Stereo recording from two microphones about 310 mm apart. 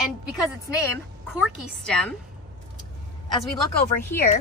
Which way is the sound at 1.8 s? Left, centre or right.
Centre.